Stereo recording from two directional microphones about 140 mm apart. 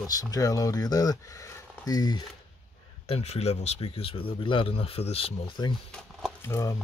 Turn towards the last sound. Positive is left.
turn(degrees=20)  # may be behind; listen again after turning